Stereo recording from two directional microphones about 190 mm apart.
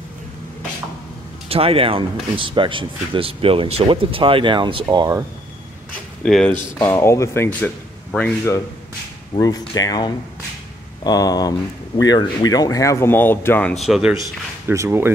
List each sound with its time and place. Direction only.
1.5 s speech: 30° right (ahead or behind)
6.2 s speech: 5° left (ahead or behind)
9.3 s speech: 20° left (ahead or behind); by 14.1 s centre (ahead or behind)
14.7 s speech: 15° right (ahead or behind)